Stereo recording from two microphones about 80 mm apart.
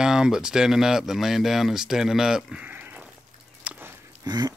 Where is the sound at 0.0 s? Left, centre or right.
Centre.